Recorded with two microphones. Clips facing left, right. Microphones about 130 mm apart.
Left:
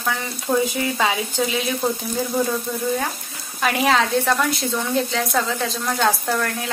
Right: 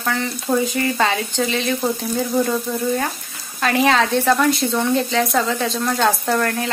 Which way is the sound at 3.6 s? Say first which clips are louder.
Right 2 dB; centre (ahead or behind).